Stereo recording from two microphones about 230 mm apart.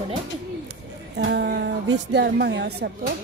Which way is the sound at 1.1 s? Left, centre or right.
Right.